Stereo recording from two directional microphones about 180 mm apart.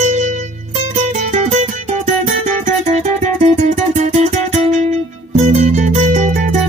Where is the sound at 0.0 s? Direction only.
40° right (ahead or behind).